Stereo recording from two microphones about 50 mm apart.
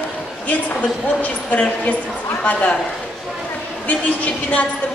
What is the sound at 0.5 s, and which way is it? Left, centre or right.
A woman's voice, left.